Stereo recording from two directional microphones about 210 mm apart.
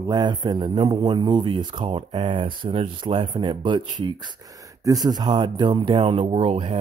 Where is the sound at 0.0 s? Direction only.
20° right (ahead or behind).